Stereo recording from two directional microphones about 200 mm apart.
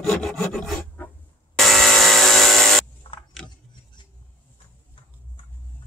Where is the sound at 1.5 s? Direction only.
Centre (ahead or behind).